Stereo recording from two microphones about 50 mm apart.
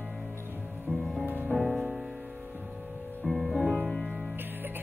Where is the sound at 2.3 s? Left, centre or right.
Right.